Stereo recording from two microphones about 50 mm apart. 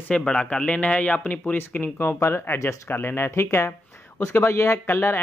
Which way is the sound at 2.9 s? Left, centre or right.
Left.